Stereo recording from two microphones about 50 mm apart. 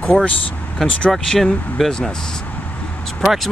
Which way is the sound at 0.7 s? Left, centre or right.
Centre.